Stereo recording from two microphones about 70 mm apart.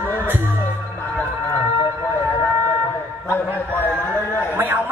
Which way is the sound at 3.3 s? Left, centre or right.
Left.